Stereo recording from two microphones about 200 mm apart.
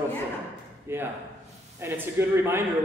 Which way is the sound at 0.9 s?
10° right (ahead or behind).